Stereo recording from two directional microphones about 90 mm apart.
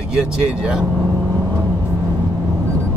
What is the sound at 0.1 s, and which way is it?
Speech, 5° right (ahead or behind).